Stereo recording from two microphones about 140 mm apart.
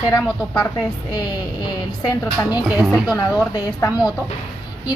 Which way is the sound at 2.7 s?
5° right (ahead or behind).